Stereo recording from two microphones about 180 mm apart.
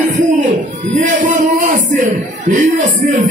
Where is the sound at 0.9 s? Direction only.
45° right (ahead or behind).